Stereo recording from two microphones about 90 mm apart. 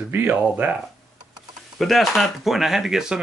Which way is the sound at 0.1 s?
20° right (ahead or behind).